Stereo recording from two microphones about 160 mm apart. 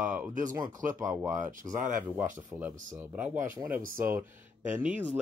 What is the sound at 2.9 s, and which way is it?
Speech, 10° right (ahead or behind).